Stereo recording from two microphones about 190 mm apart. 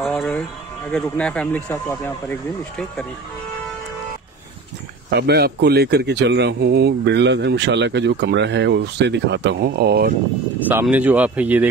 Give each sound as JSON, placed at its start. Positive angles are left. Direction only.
{"t": 0.0, "sound": "a sound", "side_deg": 5}
{"t": 0.9, "sound": "speech", "side_deg": 5}
{"t": 5.1, "sound": "a man's voice", "side_deg": -60}
{"t": 10.7, "sound": "speech", "side_deg": -10}